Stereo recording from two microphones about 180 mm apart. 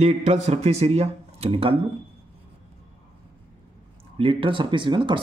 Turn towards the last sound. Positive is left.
turn(degrees=-25)  # may be behind; listen again after turning